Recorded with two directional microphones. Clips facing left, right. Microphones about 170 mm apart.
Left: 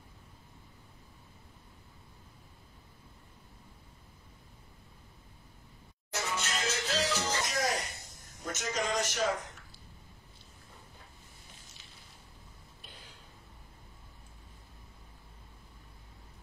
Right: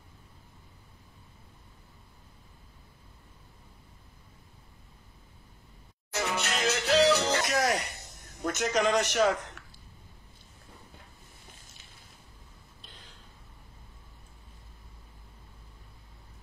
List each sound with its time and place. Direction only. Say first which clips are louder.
6.1 s music: right 5 dB; 70° right (ahead or behind)
8.4 s a man's voice: right 7 dB; 65° right (ahead or behind)